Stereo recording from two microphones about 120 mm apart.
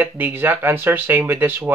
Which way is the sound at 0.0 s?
15° right (ahead or behind).